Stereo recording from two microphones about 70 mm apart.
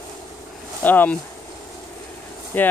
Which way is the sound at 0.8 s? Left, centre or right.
Left.